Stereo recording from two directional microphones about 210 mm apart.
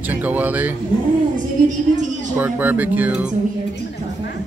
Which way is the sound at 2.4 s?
10° right (ahead or behind).